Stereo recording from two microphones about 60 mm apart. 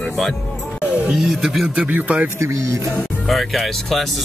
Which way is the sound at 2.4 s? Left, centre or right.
Right.